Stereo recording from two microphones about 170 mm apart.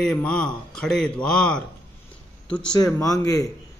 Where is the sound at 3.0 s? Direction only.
20° left (ahead or behind).